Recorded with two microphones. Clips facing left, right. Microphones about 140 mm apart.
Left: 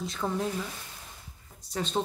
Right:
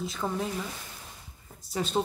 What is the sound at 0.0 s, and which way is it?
Speech, centre (ahead or behind).